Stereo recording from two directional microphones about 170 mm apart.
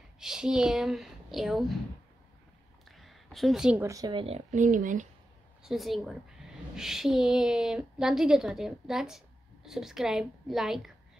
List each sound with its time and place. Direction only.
0.2 s a woman's voice: 5° right (ahead or behind)
3.0 s a sound: centre (ahead or behind)
3.8 s speech: 20° right (ahead or behind)
4.5 s speech: 50° right (ahead or behind)
5.6 s a woman's voice: centre (ahead or behind)